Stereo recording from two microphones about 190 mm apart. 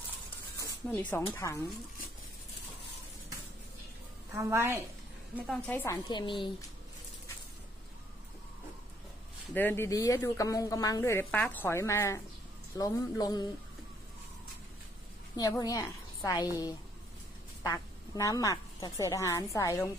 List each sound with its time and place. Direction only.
0.8 s speech: 10° left (ahead or behind)
4.4 s a woman's voice: 15° right (ahead or behind)
5.5 s speech: 10° left (ahead or behind)
6.0 s speech: 25° left (ahead or behind)
9.5 s speech: 10° left (ahead or behind)
15.3 s a woman's voice: 20° left (ahead or behind)